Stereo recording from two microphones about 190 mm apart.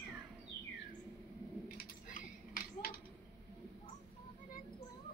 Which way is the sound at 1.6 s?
45° left (ahead or behind).